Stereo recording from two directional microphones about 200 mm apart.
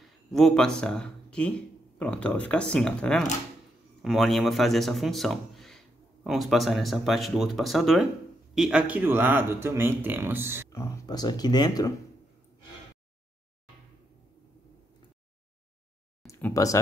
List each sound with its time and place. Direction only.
0.0 s a man's voice: centre (ahead or behind)
10.7 s speech: 15° left (ahead or behind)
16.3 s speech: 10° left (ahead or behind)